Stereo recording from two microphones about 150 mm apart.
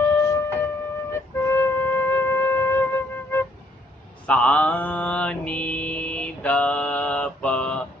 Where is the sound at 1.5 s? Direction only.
15° left (ahead or behind).